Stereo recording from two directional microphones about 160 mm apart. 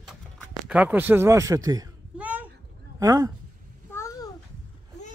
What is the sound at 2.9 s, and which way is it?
Speech, 20° right (ahead or behind).